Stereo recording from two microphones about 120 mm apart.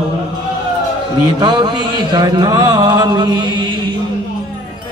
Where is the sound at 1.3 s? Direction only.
35° right (ahead or behind).